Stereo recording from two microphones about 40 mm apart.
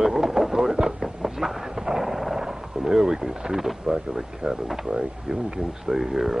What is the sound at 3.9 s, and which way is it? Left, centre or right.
Speech, centre.